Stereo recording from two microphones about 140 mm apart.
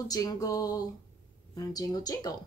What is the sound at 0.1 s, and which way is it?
Speech, 25° left (ahead or behind).